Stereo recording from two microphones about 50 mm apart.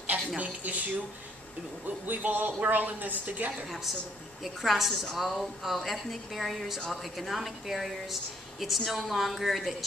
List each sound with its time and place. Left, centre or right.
0.4 s a woman's voice: right
2.0 s a woman's voice: right
4.6 s a woman's voice: centre